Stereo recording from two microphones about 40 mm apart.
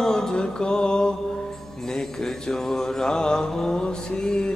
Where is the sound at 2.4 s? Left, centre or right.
Centre.